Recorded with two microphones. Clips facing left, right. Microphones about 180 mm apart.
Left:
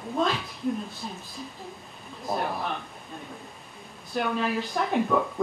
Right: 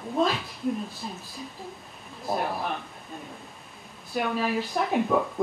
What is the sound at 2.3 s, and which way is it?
Speech, 5° right (ahead or behind).